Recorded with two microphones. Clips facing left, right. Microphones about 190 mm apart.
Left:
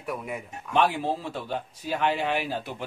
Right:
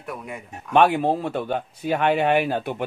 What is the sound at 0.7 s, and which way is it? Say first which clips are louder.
Speech: right 6 dB; 60° right (ahead or behind).